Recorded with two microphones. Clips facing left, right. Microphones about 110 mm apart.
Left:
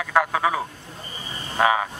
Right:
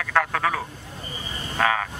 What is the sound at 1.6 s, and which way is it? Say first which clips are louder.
Frog: left 3 dB; 15° left (ahead or behind).